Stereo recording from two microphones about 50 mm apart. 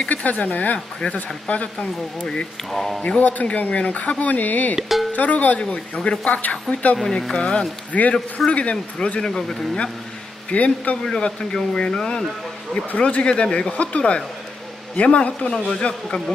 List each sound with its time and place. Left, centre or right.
0.1 s speech: left
2.7 s speech: centre
3.2 s speech: left
4.7 s speech: centre
5.1 s speech: left
7.1 s speech: centre
7.9 s speech: left
10.5 s speech: left
11.1 s speech: centre
12.9 s speech: left